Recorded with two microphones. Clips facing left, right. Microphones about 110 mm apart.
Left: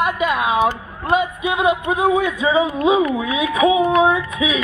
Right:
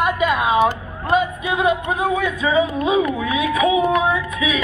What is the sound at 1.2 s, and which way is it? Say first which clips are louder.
Speech: even; 15° left (ahead or behind).